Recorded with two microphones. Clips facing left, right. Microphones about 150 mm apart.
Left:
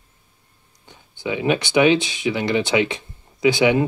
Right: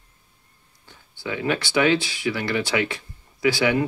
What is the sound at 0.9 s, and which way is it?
Speech, 20° left (ahead or behind).